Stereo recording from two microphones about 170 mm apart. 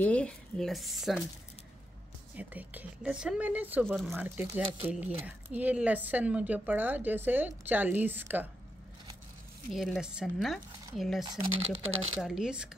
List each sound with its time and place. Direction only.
0.0 s speech: 5° left (ahead or behind)
2.3 s speech: 10° right (ahead or behind)
9.7 s speech: centre (ahead or behind)
11.2 s speech: 35° right (ahead or behind)
12.2 s speech: centre (ahead or behind)